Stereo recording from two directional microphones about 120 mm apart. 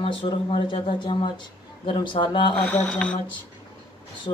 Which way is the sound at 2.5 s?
10° left (ahead or behind).